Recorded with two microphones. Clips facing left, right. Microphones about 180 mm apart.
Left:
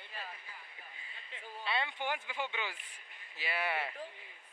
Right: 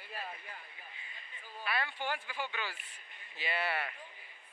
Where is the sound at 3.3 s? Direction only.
5° left (ahead or behind).